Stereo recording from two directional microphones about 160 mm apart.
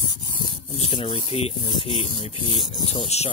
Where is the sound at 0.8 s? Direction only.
35° left (ahead or behind).